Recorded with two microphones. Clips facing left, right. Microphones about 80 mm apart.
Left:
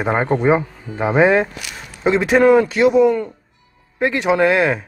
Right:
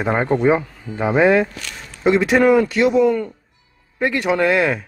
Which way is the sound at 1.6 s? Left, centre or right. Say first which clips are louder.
Left 1 dB; centre.